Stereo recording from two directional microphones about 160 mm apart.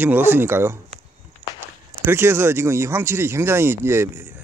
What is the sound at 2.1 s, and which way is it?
Speech, 15° right (ahead or behind).